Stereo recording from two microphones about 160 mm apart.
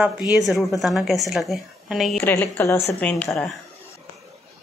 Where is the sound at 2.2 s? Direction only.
15° left (ahead or behind).